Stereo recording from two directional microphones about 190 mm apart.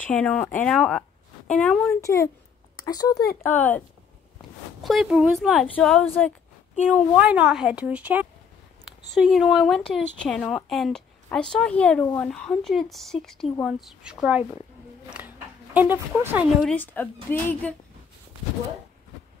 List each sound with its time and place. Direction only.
0.0 s speech: 5° left (ahead or behind)
2.0 s a woman's voice: 15° left (ahead or behind)
4.8 s speech: centre (ahead or behind)
7.2 s a woman's voice: 5° right (ahead or behind)
16.6 s a woman's voice: 10° left (ahead or behind)